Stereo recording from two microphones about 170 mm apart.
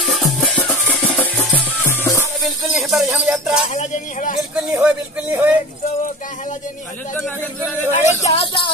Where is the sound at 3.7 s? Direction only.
45° left (ahead or behind).